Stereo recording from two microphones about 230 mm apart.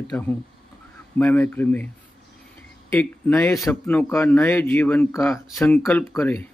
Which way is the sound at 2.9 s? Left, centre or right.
Centre.